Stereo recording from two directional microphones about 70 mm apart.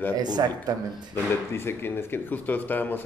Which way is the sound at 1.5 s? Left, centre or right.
Left.